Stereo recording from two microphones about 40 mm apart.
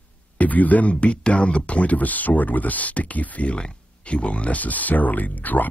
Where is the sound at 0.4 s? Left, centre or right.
Left.